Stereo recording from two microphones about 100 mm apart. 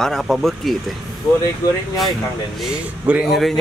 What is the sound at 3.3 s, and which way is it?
Speech, centre (ahead or behind).